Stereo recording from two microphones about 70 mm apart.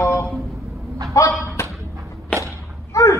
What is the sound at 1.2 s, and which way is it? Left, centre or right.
Speech, left.